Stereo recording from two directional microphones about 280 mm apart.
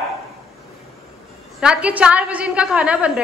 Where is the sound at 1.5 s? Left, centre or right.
Centre.